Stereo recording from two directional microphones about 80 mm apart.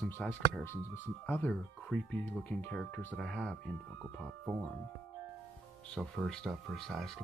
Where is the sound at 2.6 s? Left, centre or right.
Centre.